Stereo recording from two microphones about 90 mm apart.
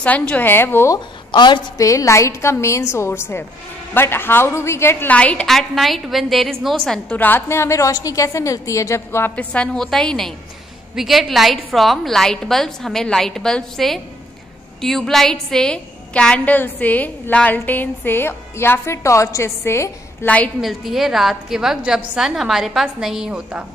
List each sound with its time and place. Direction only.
0.0 s a woman's voice: 15° left (ahead or behind)
0.8 s a woman's voice: 50° left (ahead or behind)
1.8 s a woman's voice: 40° left (ahead or behind)
5.0 s a woman's voice: 15° left (ahead or behind)
7.1 s a woman's voice: 20° left (ahead or behind)
9.3 s a woman's voice: 15° left (ahead or behind)
20.2 s a woman's voice: 15° left (ahead or behind)
20.6 s a woman's voice: centre (ahead or behind)